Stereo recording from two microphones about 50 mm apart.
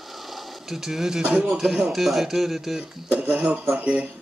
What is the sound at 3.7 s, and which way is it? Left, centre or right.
Speech, right.